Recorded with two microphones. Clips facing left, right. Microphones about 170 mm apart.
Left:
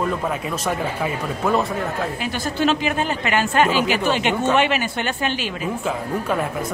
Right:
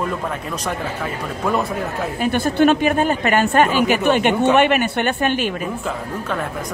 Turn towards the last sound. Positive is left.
turn(degrees=5)  # may be behind; listen again after turning